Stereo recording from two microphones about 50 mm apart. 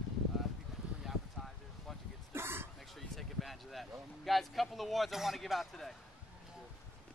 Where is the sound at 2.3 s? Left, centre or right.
Right.